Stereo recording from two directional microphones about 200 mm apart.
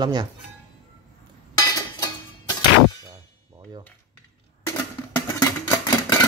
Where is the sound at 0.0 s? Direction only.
20° right (ahead or behind).